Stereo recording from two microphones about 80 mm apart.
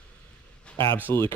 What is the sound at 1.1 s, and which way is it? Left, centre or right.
Speech, left.